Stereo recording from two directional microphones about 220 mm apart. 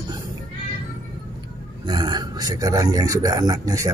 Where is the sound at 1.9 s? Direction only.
20° right (ahead or behind).